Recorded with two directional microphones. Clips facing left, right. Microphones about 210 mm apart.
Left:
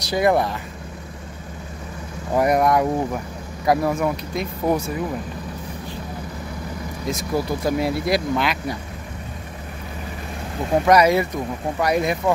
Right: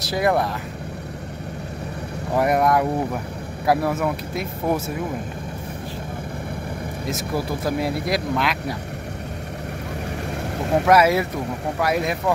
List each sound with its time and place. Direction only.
0.0 s speech: centre (ahead or behind)
2.3 s speech: centre (ahead or behind)
7.1 s speech: centre (ahead or behind)
10.7 s speech: 5° right (ahead or behind)